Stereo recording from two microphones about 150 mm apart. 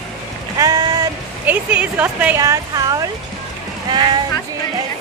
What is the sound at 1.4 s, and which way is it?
Speech, 10° right (ahead or behind).